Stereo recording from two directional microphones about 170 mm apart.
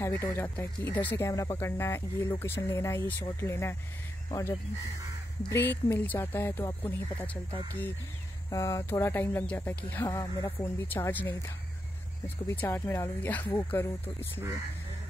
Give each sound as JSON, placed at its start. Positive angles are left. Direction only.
{"t": 0.0, "sound": "speech", "side_deg": 15}
{"t": 8.5, "sound": "speech", "side_deg": 20}